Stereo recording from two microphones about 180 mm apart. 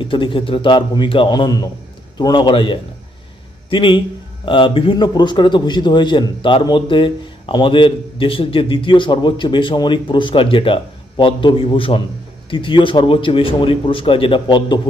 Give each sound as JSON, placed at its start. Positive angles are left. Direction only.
{"t": 0.0, "sound": "a man's voice", "side_deg": 25}